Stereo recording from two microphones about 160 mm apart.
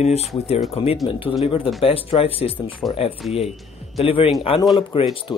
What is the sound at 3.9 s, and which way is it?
Speech, 35° left (ahead or behind).